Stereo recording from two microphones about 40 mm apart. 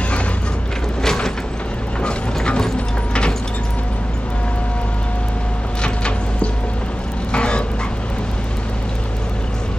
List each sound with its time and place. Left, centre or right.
1.0 s mechanisms: centre
5.8 s a sound: left
7.3 s dog: left